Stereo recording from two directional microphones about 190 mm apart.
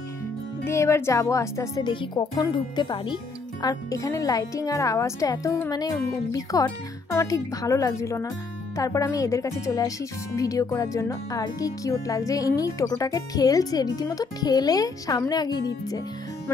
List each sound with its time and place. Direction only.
0.7 s speech: 15° left (ahead or behind)